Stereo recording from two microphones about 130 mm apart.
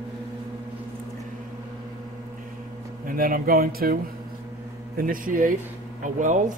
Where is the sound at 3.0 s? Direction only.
90° right.